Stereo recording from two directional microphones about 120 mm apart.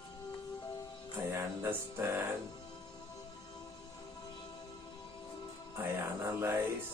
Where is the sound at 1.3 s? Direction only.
20° right (ahead or behind).